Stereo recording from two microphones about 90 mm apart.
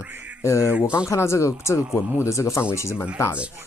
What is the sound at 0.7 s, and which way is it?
Speech, 15° right (ahead or behind).